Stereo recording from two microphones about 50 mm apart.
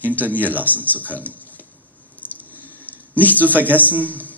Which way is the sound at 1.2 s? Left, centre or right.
Left.